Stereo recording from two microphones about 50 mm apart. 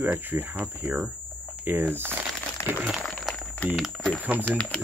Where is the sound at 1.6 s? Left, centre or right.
Right.